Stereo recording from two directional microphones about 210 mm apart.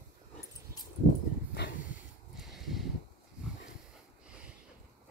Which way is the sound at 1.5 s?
50° left (ahead or behind).